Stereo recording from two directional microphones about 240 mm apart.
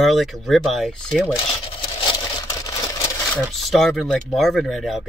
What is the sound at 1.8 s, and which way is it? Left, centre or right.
Vehicle, centre.